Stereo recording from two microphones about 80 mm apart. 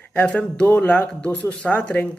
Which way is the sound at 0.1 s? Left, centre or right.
Centre.